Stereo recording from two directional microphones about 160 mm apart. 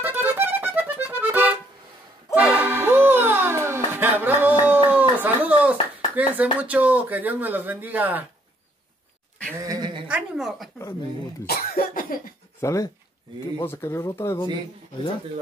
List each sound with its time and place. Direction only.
0.0 s music: 10° right (ahead or behind)
6.1 s speech: 10° right (ahead or behind)
9.7 s a sound: 25° right (ahead or behind)
10.0 s a woman's voice: 5° right (ahead or behind)
11.4 s cough: 75° left (ahead or behind)
12.5 s speech: 20° left (ahead or behind)